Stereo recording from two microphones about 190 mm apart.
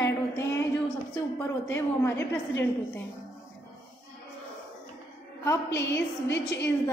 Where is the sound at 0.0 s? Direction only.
15° left (ahead or behind).